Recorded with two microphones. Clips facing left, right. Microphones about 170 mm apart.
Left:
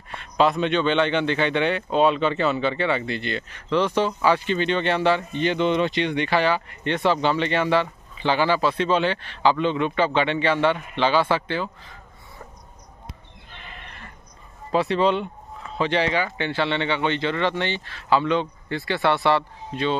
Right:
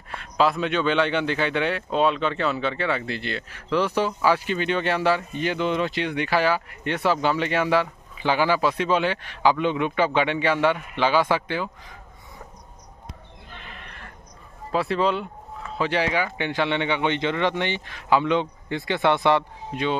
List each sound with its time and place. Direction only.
0.1 s speech: centre (ahead or behind)
14.7 s speech: centre (ahead or behind)